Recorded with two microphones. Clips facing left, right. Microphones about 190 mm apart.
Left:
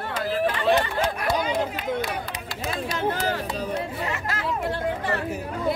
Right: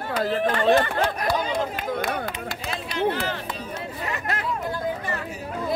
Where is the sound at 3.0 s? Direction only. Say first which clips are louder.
Even; 45° left (ahead or behind).